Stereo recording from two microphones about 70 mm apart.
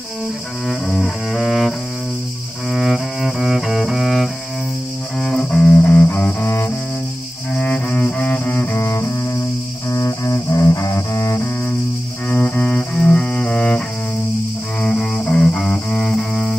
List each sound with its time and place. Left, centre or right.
0.7 s music: centre
2.7 s cello: centre
5.2 s music: centre; by 6.7 s left
7.5 s cello: left
8.7 s double bass: left
9.8 s music: left
12.3 s cello: left
14.8 s music: centre